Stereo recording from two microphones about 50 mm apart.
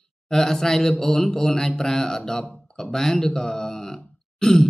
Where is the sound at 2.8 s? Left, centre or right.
Centre.